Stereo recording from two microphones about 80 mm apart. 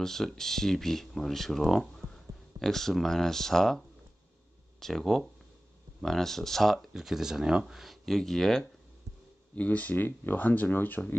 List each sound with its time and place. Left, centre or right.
0.0 s speech: centre
9.6 s speech: centre